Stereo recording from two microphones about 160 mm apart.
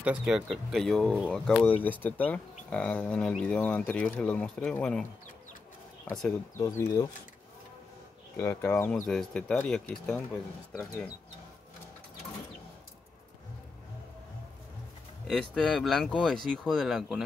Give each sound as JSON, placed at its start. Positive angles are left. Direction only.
{"t": 0.0, "sound": "speech", "side_deg": -5}
{"t": 6.6, "sound": "speech", "side_deg": 20}
{"t": 8.4, "sound": "speech", "side_deg": 15}
{"t": 15.2, "sound": "speech", "side_deg": 5}